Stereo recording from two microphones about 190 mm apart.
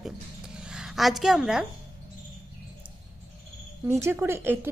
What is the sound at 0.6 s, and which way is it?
A woman's voice, 5° right (ahead or behind).